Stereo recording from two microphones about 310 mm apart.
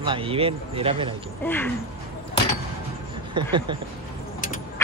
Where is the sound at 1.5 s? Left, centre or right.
Centre.